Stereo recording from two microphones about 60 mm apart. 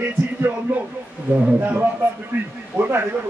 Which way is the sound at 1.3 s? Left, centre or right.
Right.